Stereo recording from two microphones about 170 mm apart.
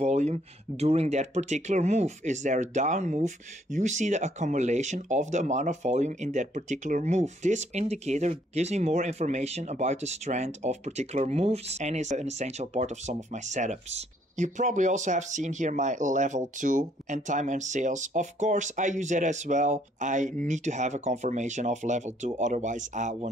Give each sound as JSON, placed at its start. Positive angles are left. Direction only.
{"t": 0.0, "sound": "speech", "side_deg": -40}